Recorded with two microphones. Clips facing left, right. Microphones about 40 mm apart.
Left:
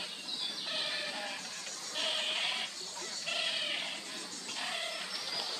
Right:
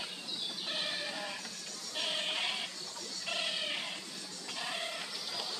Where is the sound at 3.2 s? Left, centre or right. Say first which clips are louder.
Left 1 dB; centre.